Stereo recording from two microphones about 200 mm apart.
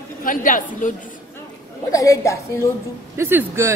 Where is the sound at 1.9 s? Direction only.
15° left (ahead or behind).